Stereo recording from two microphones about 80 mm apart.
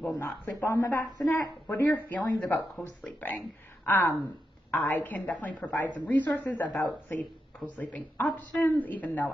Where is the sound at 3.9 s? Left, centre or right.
Left.